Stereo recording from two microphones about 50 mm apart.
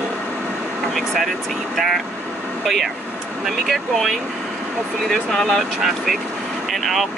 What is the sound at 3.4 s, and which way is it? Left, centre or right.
Speech, centre.